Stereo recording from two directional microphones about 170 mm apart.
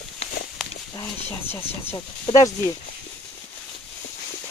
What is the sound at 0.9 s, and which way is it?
Speech, 15° left (ahead or behind).